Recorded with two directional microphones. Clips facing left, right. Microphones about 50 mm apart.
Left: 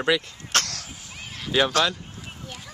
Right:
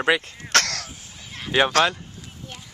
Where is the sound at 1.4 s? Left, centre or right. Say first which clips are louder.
Right 2 dB; right.